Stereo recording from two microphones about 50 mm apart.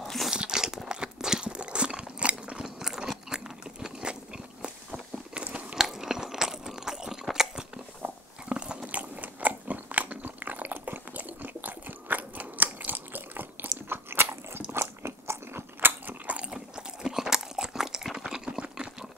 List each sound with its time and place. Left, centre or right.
0.0 s crunch: centre
0.3 s crunch: centre
2.6 s crunch: centre
7.3 s biting: centre; by 15.9 s right
16.1 s biting: right
16.5 s crunch: centre